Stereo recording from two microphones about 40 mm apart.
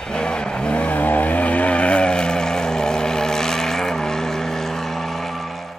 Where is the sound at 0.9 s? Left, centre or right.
Left; by 5.7 s centre.